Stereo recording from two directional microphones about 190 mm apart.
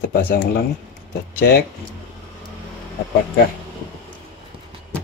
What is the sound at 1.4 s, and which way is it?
Speech, 55° left (ahead or behind).